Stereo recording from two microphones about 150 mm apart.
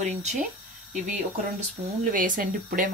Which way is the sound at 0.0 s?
50° right (ahead or behind).